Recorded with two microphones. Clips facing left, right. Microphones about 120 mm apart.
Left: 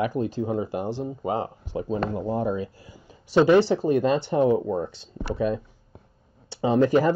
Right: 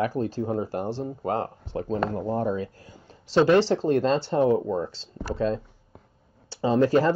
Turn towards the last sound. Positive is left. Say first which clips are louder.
# left 1 dB
turn(degrees=15)  # may be behind; listen again after turning